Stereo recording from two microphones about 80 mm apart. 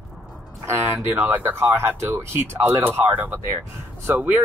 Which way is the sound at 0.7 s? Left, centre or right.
Right.